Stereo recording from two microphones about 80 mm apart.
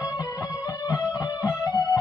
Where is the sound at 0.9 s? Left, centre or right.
Left.